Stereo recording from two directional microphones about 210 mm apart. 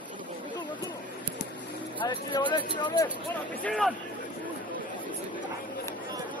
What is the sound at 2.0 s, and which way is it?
Speech, 20° left (ahead or behind).